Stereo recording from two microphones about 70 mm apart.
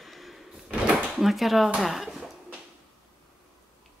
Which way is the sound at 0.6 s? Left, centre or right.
Centre.